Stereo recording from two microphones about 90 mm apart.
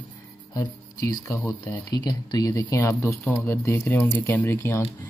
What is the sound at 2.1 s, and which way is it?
Speech, 45° left (ahead or behind).